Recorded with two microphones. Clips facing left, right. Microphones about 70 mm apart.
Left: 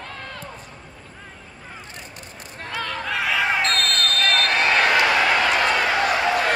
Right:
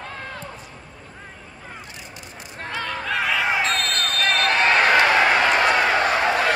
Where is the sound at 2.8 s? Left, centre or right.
Centre.